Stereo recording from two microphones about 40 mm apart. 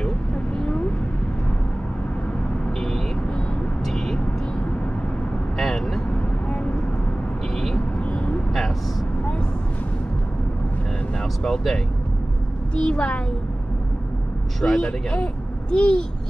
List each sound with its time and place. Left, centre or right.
0.6 s vehicle: left
3.8 s vehicle: centre
5.6 s vehicle: centre
6.5 s vehicle: left
11.4 s speech: centre
12.7 s speech: left
14.6 s speech: left